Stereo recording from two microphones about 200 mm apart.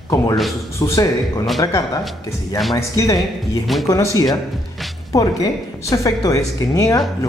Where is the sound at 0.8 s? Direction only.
15° left (ahead or behind).